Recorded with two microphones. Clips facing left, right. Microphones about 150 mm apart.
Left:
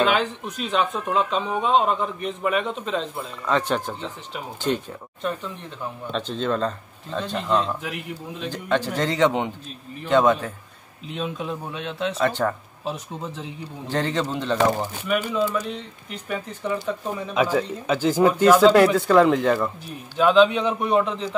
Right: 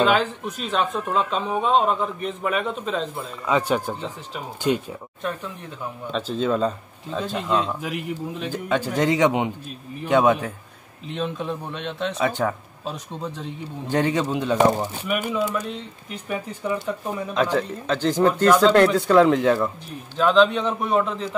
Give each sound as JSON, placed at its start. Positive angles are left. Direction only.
{"t": 0.0, "sound": "speech", "side_deg": 0}
{"t": 11.1, "sound": "a man's voice", "side_deg": 5}
{"t": 12.3, "sound": "speech", "side_deg": -10}
{"t": 12.8, "sound": "speech", "side_deg": 5}
{"t": 13.8, "sound": "speech", "side_deg": -10}